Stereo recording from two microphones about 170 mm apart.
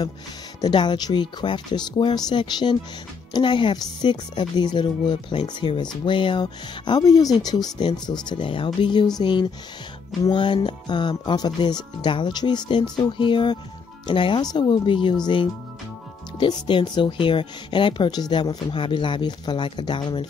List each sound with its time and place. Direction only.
0.6 s speech: 25° left (ahead or behind)